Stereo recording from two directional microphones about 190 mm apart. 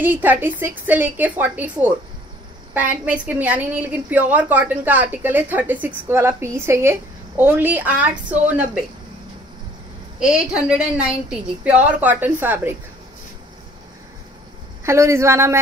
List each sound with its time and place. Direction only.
0.0 s a woman's voice: 10° right (ahead or behind)
10.1 s a woman's voice: 5° right (ahead or behind)
14.9 s a woman's voice: 15° right (ahead or behind)